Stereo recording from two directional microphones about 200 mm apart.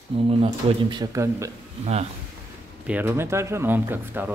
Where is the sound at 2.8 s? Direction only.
10° right (ahead or behind).